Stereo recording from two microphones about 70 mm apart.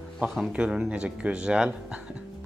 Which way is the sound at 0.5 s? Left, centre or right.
Centre.